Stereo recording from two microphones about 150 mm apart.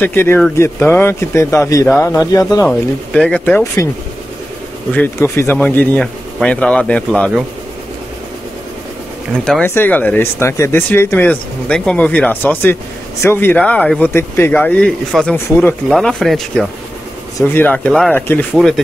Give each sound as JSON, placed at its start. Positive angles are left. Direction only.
{"t": 0.0, "sound": "speech", "side_deg": 15}
{"t": 2.6, "sound": "speech", "side_deg": 10}
{"t": 4.9, "sound": "speech", "side_deg": 15}
{"t": 9.4, "sound": "speech", "side_deg": 5}
{"t": 15.9, "sound": "speech", "side_deg": 5}
{"t": 17.4, "sound": "speech", "side_deg": 15}
{"t": 18.5, "sound": "speech", "side_deg": 0}